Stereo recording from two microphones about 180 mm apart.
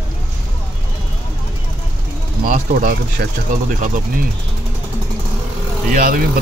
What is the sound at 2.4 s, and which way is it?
Pigeon, 45° right (ahead or behind).